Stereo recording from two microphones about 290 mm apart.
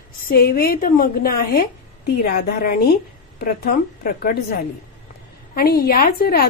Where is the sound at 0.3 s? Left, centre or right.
Left.